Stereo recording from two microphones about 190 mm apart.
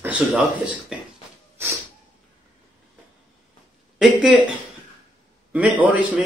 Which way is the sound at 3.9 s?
5° right (ahead or behind).